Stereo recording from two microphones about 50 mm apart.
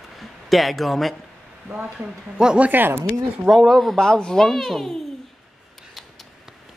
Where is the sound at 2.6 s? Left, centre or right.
Right.